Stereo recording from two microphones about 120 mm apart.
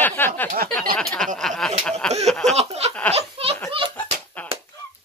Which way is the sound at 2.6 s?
60° right (ahead or behind).